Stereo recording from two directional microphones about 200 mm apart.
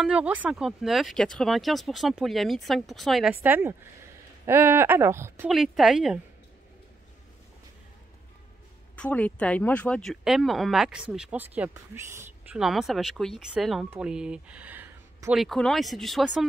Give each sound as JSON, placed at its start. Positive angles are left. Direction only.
{"t": 0.0, "sound": "speech", "side_deg": -5}
{"t": 5.5, "sound": "speech", "side_deg": 0}
{"t": 8.9, "sound": "speech", "side_deg": 5}